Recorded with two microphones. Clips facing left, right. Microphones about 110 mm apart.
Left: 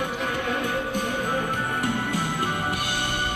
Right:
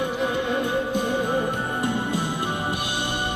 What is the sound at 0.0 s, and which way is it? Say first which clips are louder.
Music: right 3 dB; 10° right (ahead or behind).